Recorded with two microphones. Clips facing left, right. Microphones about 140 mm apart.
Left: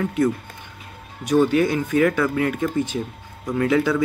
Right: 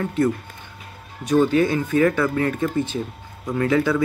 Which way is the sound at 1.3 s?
10° left (ahead or behind).